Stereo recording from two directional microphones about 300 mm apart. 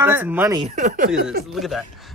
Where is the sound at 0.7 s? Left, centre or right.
Right.